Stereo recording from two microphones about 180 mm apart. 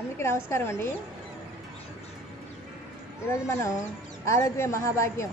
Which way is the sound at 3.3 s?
15° left (ahead or behind).